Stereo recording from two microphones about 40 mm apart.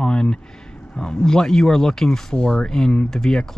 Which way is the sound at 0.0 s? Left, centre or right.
Left.